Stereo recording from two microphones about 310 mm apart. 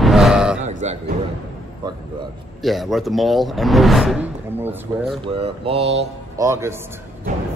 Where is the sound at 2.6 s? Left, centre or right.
Centre.